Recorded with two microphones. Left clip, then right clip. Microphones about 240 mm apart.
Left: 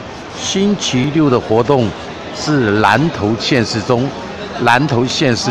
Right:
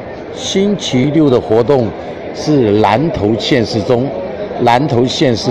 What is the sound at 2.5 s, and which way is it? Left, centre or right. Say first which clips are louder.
Speech: right 2 dB; centre.